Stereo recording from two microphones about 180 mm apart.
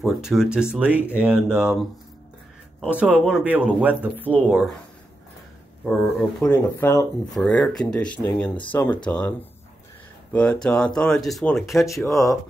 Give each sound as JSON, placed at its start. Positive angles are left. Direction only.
{"t": 0.0, "sound": "speech", "side_deg": -5}
{"t": 6.4, "sound": "speech", "side_deg": 10}
{"t": 10.3, "sound": "speech", "side_deg": 5}
{"t": 11.9, "sound": "speech", "side_deg": 15}